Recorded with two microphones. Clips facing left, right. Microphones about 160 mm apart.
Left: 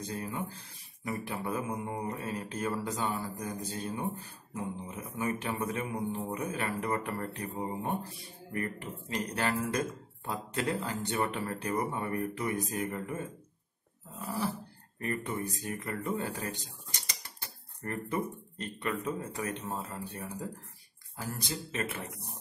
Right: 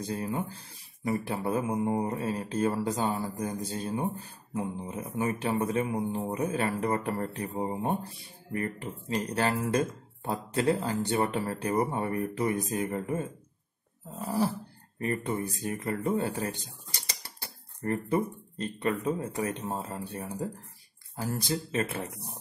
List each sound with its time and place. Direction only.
0.0 s speech: 35° right (ahead or behind)
21.2 s speech: 35° right (ahead or behind)